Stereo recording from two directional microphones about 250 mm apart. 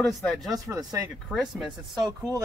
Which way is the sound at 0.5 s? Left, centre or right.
Centre.